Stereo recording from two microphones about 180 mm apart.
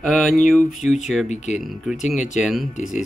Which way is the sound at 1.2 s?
40° left (ahead or behind).